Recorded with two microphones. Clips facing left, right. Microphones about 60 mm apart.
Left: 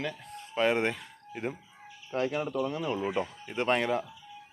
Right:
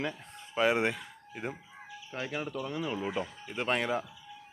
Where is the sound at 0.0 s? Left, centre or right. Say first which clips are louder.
Even; right.